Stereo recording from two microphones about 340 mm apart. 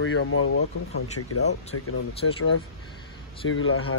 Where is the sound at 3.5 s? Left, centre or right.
Left.